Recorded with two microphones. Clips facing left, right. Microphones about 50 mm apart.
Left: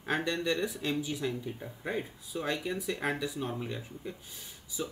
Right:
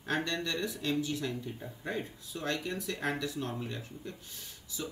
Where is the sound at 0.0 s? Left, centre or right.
Centre.